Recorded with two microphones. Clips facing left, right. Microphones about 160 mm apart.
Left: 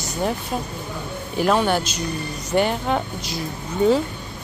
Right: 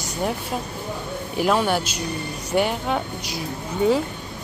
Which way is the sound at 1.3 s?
5° right (ahead or behind).